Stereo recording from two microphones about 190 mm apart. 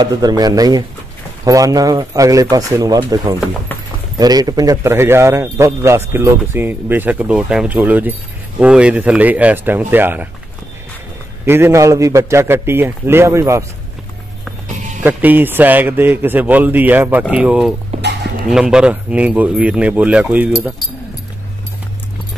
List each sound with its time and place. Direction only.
0.0 s speech: 20° right (ahead or behind)
11.4 s speech: 10° right (ahead or behind)
15.0 s speech: 10° right (ahead or behind)